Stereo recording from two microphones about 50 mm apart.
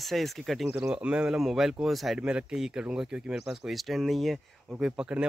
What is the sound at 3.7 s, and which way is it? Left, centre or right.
Speech, centre.